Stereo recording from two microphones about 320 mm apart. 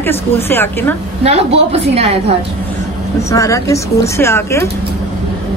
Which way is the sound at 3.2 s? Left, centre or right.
Centre.